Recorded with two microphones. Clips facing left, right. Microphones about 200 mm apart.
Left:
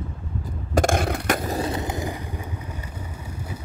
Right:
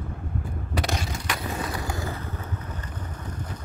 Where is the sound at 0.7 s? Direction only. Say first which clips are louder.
Left 9 dB; 50° left (ahead or behind).